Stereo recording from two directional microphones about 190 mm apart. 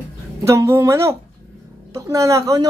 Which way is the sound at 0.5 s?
15° right (ahead or behind).